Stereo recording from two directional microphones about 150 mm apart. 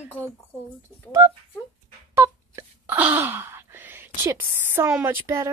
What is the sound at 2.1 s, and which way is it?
Wail, 20° right (ahead or behind).